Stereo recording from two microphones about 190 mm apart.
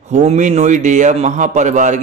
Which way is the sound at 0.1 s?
35° right (ahead or behind).